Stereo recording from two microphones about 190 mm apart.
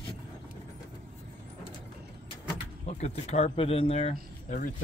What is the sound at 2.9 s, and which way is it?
Speech, 35° left (ahead or behind).